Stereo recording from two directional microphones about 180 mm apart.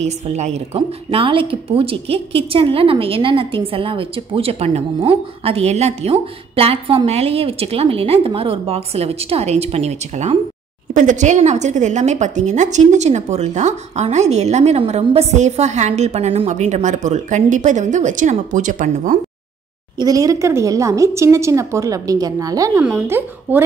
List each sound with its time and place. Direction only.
0.0 s speech: 35° right (ahead or behind)
20.0 s speech: 20° right (ahead or behind)